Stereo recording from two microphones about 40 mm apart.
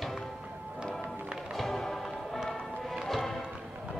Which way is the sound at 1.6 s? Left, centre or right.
Centre.